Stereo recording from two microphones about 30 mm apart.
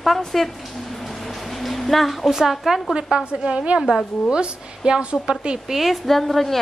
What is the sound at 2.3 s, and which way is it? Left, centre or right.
Speech, centre.